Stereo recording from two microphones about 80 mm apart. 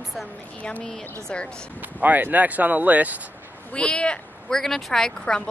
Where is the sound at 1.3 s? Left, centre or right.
Centre.